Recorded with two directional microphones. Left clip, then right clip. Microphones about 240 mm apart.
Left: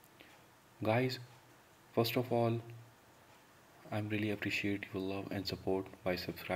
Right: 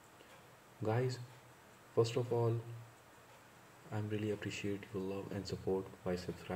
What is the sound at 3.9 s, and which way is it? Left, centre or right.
Speech, centre.